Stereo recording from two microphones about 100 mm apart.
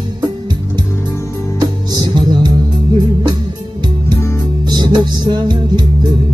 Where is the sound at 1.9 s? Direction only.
45° right (ahead or behind).